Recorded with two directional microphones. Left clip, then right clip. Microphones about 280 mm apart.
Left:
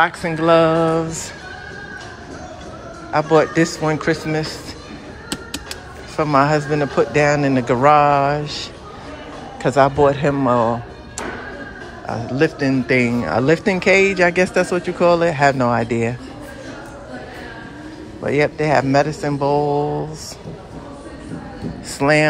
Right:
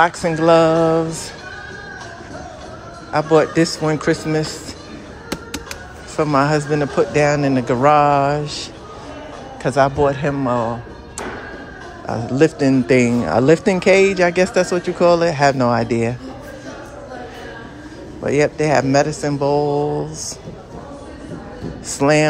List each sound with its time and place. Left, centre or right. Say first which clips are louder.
0.0 s speech: right 2 dB; centre
3.1 s speech: even; centre
6.1 s a man's voice: left 1 dB; centre
12.1 s speech: right 3 dB; centre
18.2 s speech: right 1 dB; centre
21.9 s speech: even; centre